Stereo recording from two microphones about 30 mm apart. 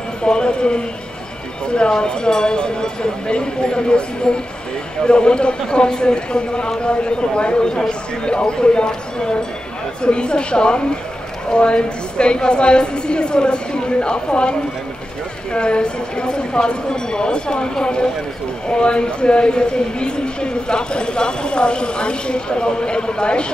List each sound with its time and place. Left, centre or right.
0.2 s speech: left
18.7 s speech: left